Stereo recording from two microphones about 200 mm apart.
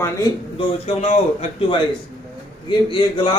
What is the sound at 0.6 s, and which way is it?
Speech, 30° left (ahead or behind).